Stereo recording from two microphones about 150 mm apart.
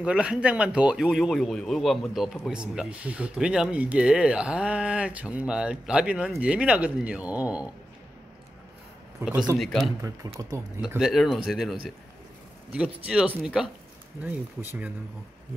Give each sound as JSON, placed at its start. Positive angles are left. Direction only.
{"t": 0.0, "sound": "speech", "side_deg": -5}
{"t": 9.2, "sound": "speech", "side_deg": -5}
{"t": 10.0, "sound": "speech", "side_deg": -20}
{"t": 11.0, "sound": "speech", "side_deg": 0}
{"t": 12.7, "sound": "speech", "side_deg": -5}